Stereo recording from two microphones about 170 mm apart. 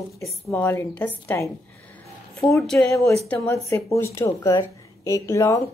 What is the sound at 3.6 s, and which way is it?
Speech, 15° left (ahead or behind).